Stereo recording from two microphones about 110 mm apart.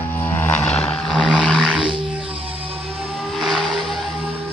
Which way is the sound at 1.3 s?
10° left (ahead or behind).